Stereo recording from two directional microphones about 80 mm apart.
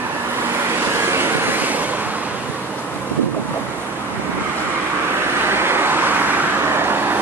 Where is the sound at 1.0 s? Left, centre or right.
Right.